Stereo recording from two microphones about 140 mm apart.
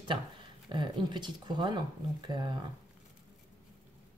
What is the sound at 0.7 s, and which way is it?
Speech, 35° right (ahead or behind).